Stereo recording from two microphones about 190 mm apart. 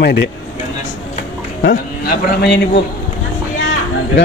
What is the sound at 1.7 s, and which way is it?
Speech, 55° left (ahead or behind).